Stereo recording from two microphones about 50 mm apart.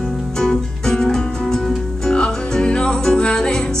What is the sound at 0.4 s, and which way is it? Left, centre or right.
Music, centre.